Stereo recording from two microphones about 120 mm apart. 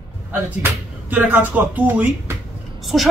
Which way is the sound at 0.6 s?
15° right (ahead or behind).